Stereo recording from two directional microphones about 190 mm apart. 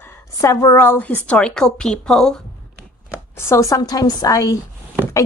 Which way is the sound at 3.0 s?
15° left (ahead or behind).